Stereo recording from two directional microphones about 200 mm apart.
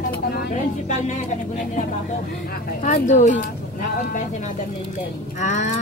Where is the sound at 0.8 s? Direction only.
35° left (ahead or behind).